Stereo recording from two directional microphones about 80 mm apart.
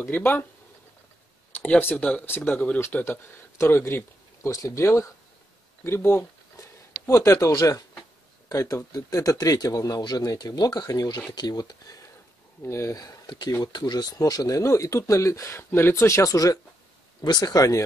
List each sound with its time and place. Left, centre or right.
0.0 s speech: left
1.5 s speech: left
4.4 s speech: left
12.6 s speech: left
13.0 s speech: left
17.2 s speech: left